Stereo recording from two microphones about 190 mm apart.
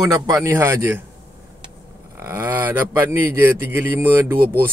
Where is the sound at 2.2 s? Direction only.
15° right (ahead or behind).